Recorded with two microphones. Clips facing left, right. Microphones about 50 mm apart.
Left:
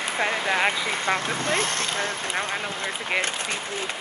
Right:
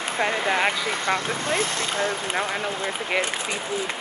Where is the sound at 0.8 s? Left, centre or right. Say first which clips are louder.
Right 1 dB; left.